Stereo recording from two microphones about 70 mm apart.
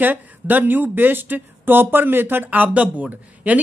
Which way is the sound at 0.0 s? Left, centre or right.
Right.